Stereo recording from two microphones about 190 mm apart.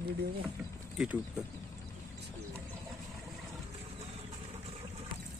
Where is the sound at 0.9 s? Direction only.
5° right (ahead or behind).